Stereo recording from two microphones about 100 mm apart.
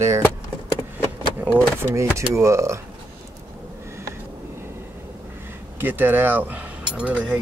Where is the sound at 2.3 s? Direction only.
30° right (ahead or behind).